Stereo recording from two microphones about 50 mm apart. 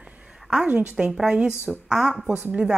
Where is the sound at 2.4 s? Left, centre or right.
Right.